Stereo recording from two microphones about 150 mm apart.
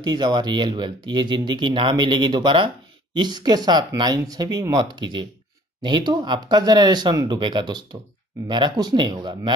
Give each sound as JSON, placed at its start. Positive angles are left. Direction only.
{"t": 0.0, "sound": "speech", "side_deg": -30}